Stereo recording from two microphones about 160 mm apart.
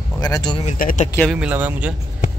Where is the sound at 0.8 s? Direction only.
60° left (ahead or behind).